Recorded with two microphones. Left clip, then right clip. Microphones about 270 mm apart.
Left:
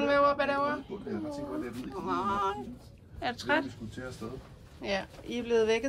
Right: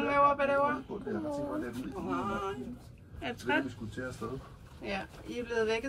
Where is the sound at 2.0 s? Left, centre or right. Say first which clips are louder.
Left 5 dB; centre.